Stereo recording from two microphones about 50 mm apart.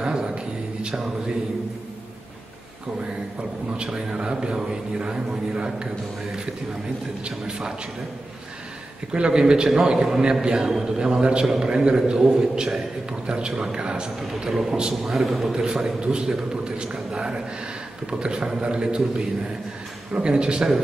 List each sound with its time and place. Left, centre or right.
0.0 s a sound: centre
3.7 s a man's voice: centre
7.2 s speech: centre
9.1 s a man's voice: centre
14.4 s a man's voice: centre
15.1 s a man's voice: centre
15.5 s a man's voice: centre